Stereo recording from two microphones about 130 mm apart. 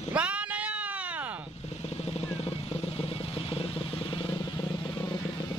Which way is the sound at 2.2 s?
45° left (ahead or behind).